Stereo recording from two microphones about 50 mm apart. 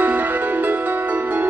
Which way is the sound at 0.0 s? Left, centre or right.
Right.